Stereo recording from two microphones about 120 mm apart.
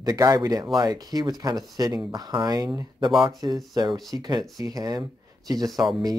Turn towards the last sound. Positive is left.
turn(degrees=0)  # may be behind; listen again after turning